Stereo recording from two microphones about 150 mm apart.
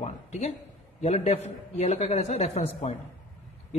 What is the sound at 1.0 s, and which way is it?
A man's voice, 45° left (ahead or behind).